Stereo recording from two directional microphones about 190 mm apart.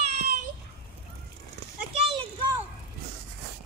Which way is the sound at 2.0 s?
30° right (ahead or behind).